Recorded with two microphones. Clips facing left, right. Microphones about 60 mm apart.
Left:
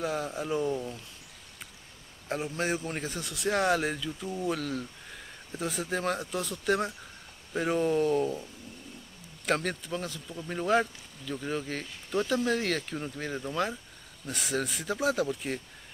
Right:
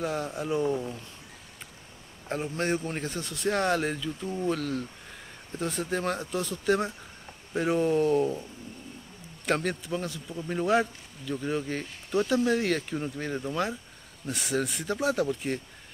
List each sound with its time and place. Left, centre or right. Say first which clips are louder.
0.0 s speech: right 1 dB; centre
2.2 s speech: right 1 dB; centre
9.5 s speech: right 2 dB; centre